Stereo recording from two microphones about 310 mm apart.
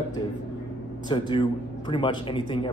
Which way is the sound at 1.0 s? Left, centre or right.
Centre.